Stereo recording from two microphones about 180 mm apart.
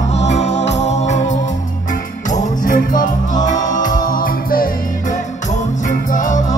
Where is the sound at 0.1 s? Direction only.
35° left (ahead or behind).